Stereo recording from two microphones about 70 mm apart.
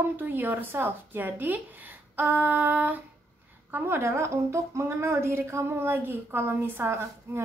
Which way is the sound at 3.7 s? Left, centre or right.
Right.